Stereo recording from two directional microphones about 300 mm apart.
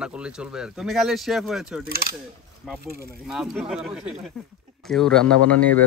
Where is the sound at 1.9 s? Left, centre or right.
Right.